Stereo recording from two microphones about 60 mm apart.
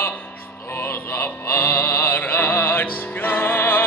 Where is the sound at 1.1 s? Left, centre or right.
Left.